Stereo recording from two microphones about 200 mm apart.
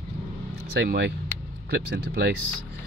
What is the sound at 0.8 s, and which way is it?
Speech, 60° right (ahead or behind).